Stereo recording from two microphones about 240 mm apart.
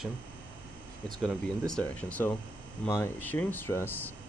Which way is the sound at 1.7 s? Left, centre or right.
Centre.